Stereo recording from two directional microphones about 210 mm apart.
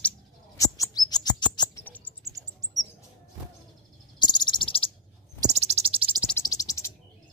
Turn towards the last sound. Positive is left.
turn(degrees=15)  # may be behind; listen again after turning